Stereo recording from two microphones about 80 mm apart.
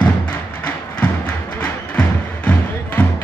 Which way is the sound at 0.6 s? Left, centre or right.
Left.